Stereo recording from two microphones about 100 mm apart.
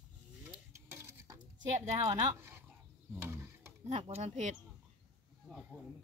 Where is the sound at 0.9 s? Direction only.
30° right (ahead or behind).